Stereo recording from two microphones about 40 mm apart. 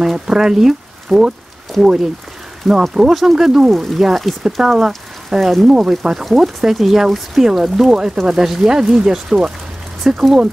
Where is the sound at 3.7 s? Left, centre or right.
Centre.